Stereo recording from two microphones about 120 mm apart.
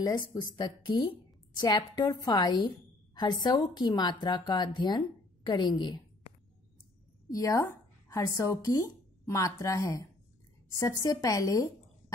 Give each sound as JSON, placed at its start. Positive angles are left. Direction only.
{"t": 0.6, "sound": "a woman's voice", "side_deg": 40}
{"t": 7.3, "sound": "a woman's voice", "side_deg": 25}